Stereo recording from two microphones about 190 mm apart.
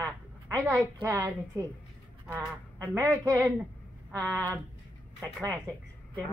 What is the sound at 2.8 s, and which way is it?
Speech, 15° right (ahead or behind).